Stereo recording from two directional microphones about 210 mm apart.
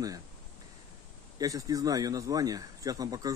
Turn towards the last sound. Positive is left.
turn(degrees=-15)  # may be behind; listen again after turning